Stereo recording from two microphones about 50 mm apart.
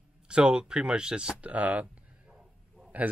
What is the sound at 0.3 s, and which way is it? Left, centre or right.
Speech, centre.